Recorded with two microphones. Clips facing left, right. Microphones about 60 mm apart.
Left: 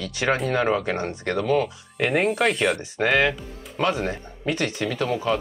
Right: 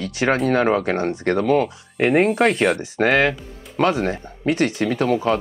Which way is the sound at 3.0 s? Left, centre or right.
Right.